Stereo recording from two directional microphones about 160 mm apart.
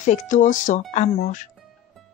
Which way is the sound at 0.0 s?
50° left (ahead or behind).